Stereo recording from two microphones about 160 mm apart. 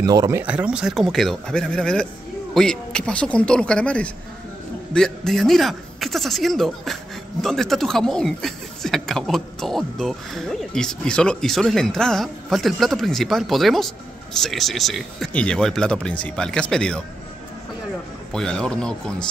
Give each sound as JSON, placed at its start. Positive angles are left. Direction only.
{"t": 0.0, "sound": "speech", "side_deg": -25}
{"t": 0.4, "sound": "speech", "side_deg": -10}
{"t": 18.3, "sound": "speech", "side_deg": 5}